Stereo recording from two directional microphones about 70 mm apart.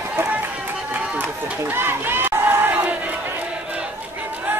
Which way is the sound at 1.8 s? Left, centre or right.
Right.